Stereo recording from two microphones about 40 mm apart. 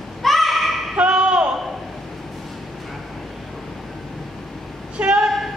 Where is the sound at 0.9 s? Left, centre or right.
Right.